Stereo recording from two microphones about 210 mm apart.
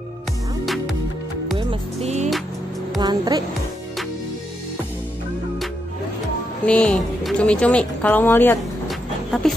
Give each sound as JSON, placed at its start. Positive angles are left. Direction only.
{"t": 1.6, "sound": "music", "side_deg": -30}
{"t": 3.0, "sound": "music", "side_deg": -20}
{"t": 6.6, "sound": "speech", "side_deg": 5}
{"t": 8.8, "sound": "a sound", "side_deg": 0}